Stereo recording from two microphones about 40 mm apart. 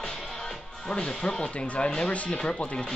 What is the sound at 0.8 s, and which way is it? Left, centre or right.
Speech, left.